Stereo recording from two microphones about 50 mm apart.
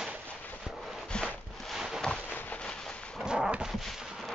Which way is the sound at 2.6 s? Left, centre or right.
Centre.